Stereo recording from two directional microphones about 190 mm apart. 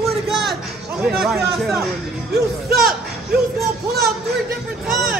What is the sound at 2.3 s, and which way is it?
Speech, 55° right (ahead or behind).